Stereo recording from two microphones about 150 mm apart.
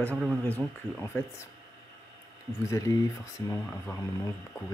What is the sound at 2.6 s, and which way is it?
Speech, 20° left (ahead or behind).